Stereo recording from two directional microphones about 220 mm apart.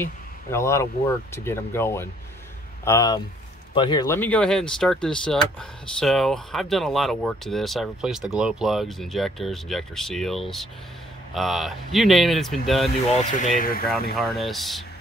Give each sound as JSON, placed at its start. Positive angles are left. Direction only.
{"t": 0.0, "sound": "speech", "side_deg": 10}
{"t": 13.2, "sound": "speech", "side_deg": 35}
{"t": 14.1, "sound": "speech", "side_deg": 0}